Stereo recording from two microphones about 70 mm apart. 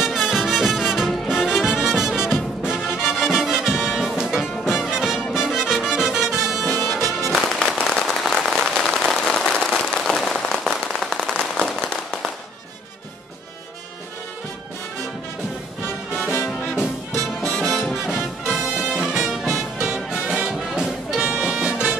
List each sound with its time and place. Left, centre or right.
0.0 s music: centre
7.8 s a sound: centre
11.5 s firecracker: centre
16.2 s music: left
16.7 s music: centre